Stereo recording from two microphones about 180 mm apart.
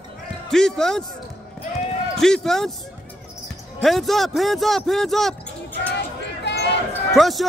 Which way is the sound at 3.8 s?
Centre (ahead or behind).